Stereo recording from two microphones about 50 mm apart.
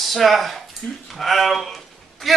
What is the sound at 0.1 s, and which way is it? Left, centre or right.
Speech, centre.